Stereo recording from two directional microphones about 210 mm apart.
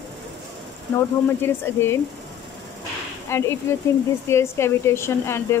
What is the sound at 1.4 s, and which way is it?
Speech, 10° left (ahead or behind).